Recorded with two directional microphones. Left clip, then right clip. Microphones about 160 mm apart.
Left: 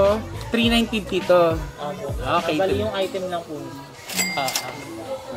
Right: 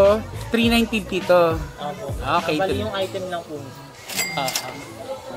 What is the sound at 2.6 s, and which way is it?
Speech, 15° left (ahead or behind).